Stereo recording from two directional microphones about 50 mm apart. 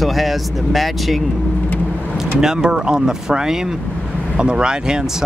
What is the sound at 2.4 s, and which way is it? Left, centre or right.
Speech, centre.